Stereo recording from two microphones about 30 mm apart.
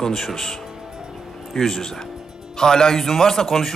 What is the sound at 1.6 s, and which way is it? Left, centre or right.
A man's voice, centre.